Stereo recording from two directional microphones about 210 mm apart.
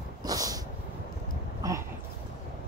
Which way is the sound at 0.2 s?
15° right (ahead or behind).